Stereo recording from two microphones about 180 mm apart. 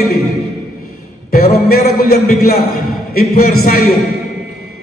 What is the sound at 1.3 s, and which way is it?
A man's voice, 55° left (ahead or behind).